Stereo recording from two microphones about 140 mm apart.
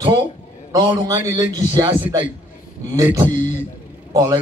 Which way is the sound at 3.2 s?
60° left (ahead or behind).